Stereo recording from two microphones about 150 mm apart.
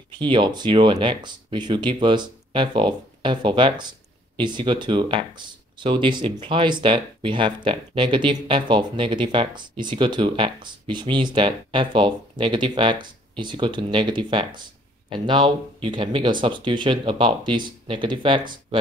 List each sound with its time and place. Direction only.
0.2 s speech: 30° right (ahead or behind)